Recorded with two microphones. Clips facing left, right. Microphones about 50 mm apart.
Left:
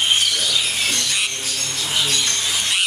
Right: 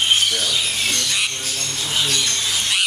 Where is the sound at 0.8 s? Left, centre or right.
Centre.